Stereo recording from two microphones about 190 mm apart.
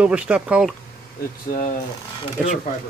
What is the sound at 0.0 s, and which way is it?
Speech, 5° right (ahead or behind).